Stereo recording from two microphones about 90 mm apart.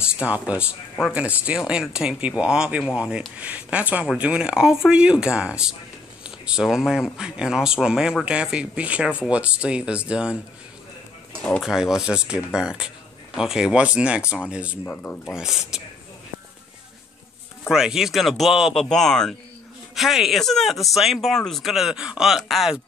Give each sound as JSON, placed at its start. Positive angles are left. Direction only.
{"t": 0.2, "sound": "speech", "side_deg": -15}
{"t": 11.6, "sound": "speech", "side_deg": -5}
{"t": 14.9, "sound": "speech", "side_deg": 20}
{"t": 15.3, "sound": "speech", "side_deg": -5}
{"t": 17.6, "sound": "speech", "side_deg": -5}